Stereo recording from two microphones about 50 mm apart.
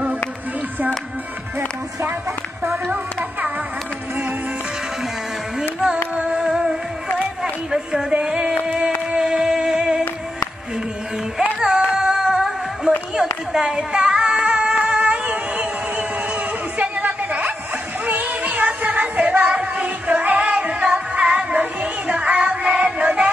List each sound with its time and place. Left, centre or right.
5.6 s music: centre
7.7 s music: centre
8.6 s a sound: centre
9.1 s music: centre
11.6 s music: centre
13.1 s singing: centre
15.2 s a sound: right
18.0 s music: right